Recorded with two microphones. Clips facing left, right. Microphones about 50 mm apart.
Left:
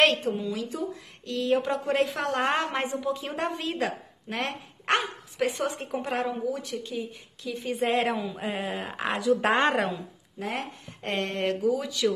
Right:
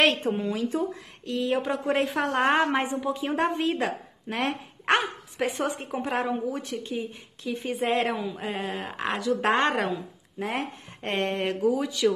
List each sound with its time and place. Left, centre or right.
0.3 s speech: right
1.2 s a woman's voice: centre
4.3 s speech: centre
6.5 s speech: right
7.7 s speech: centre
10.4 s speech: right
11.3 s a woman's voice: centre